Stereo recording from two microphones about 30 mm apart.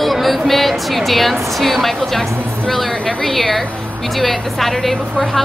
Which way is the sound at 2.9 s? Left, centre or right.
Left.